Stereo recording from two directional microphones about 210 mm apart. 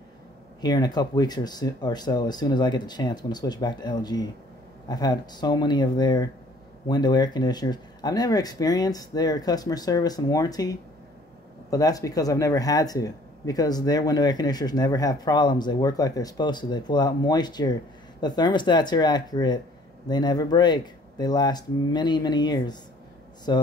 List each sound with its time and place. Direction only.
0.6 s speech: 20° left (ahead or behind)